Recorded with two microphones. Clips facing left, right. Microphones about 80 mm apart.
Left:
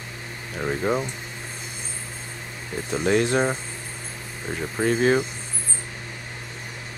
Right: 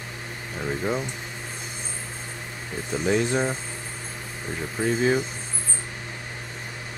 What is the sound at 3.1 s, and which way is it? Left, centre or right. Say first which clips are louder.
Speech: left 3 dB; left.